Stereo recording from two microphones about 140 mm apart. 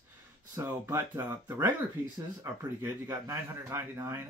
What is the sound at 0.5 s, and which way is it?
Speech, 20° right (ahead or behind).